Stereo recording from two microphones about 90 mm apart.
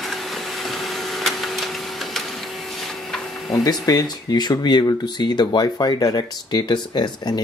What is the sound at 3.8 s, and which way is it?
Speech, 45° left (ahead or behind).